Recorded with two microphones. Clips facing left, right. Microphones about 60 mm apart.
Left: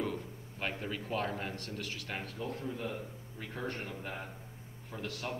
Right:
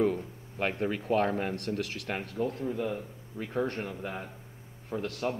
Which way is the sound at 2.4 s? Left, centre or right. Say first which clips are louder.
Right 10 dB; right.